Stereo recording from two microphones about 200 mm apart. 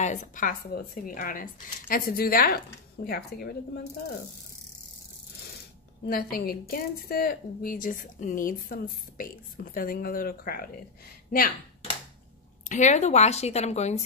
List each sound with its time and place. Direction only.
0.0 s a woman's voice: 35° left (ahead or behind); by 3.8 s 50° left (ahead or behind)
6.0 s a woman's voice: 50° left (ahead or behind)
12.6 s a woman's voice: 35° left (ahead or behind)